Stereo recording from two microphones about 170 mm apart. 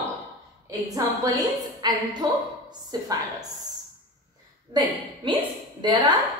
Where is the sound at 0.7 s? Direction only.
20° right (ahead or behind).